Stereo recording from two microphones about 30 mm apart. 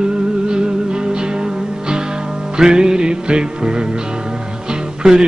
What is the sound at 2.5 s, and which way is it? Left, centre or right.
Music, right.